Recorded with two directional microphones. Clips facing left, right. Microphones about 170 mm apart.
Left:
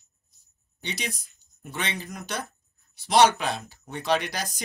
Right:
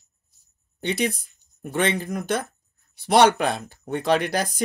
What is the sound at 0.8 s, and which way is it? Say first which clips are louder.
Speech: right 10 dB; 55° right (ahead or behind).